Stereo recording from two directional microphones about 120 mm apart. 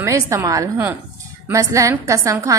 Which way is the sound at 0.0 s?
25° right (ahead or behind).